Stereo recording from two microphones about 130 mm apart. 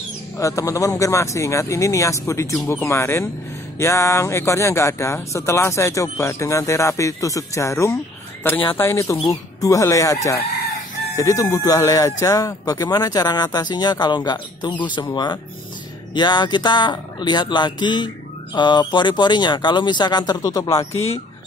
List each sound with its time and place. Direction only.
0.4 s speech: 25° left (ahead or behind)
20.9 s speech: 50° left (ahead or behind)